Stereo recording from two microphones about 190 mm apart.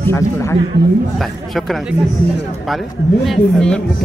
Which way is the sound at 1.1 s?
Centre (ahead or behind).